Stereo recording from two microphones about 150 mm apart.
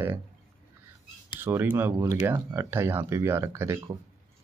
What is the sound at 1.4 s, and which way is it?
Speech, 15° right (ahead or behind).